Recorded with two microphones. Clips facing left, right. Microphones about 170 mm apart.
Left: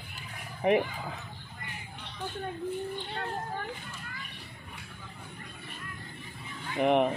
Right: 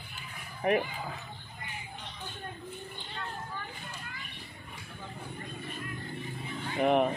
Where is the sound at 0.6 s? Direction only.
20° left (ahead or behind).